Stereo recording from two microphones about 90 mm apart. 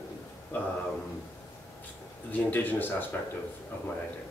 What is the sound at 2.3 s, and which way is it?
Speech, 20° left (ahead or behind).